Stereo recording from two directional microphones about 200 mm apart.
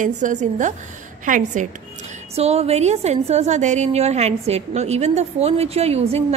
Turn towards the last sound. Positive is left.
turn(degrees=-30)  # may be behind; listen again after turning